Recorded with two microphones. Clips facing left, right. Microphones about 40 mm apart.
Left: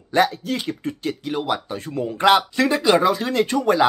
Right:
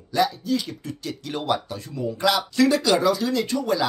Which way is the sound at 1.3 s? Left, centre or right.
Centre.